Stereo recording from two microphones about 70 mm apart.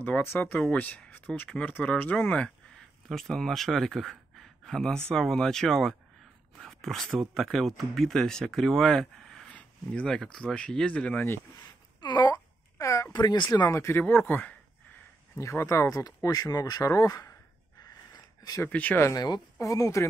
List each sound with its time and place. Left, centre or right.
0.0 s speech: left
3.1 s a man's voice: centre
12.0 s a sound: left
12.7 s a sound: left
13.1 s speech: left
13.7 s speech: left
15.3 s speech: left
18.1 s a sound: left
18.7 s speech: left
19.1 s speech: left
19.6 s speech: left